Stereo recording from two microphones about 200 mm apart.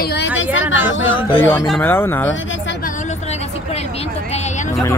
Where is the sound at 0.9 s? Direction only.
75° left (ahead or behind).